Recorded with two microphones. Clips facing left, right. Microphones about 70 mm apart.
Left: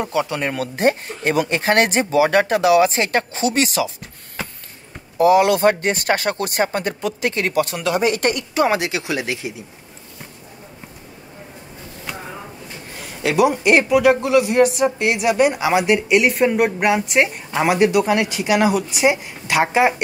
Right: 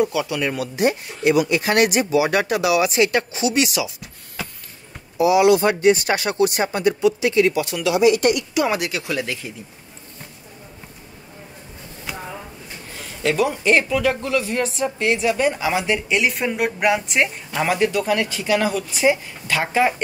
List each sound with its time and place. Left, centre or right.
0.0 s speech: left
8.7 s speech: left
13.5 s speech: centre
14.7 s a woman's voice: left
15.0 s speech: centre